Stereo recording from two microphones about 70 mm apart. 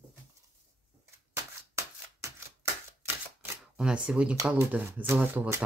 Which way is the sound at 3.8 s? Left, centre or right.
Centre.